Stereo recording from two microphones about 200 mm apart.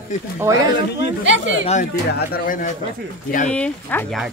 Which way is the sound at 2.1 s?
50° left (ahead or behind).